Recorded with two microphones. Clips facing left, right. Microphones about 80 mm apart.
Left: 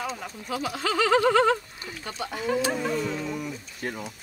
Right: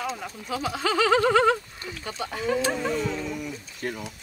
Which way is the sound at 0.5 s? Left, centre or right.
Right.